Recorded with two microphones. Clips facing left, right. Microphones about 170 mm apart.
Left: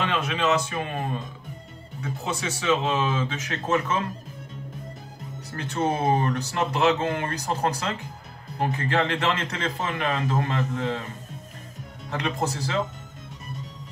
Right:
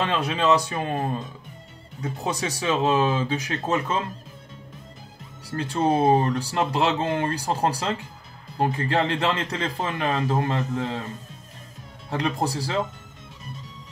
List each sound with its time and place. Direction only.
0.0 s speech: 35° right (ahead or behind)
5.5 s speech: 30° right (ahead or behind)
12.1 s speech: 35° right (ahead or behind)